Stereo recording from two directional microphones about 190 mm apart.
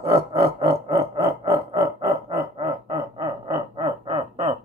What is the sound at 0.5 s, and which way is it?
Music, 30° right (ahead or behind).